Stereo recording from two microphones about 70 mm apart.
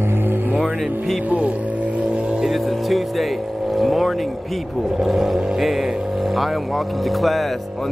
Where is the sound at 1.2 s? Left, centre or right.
Centre.